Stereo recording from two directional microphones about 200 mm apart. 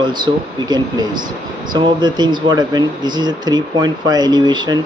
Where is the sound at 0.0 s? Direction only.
20° right (ahead or behind).